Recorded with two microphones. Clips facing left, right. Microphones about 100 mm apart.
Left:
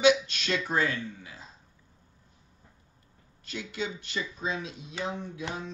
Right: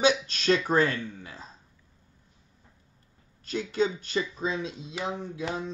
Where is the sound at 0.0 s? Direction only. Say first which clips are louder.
Left 1 dB; 35° right (ahead or behind).